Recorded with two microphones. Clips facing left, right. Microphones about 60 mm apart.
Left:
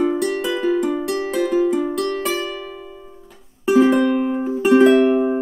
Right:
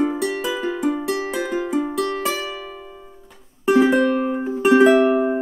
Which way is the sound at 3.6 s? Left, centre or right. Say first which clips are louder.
Left 1 dB; centre.